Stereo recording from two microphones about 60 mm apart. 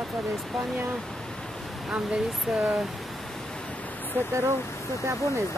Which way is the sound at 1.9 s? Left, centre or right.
Centre.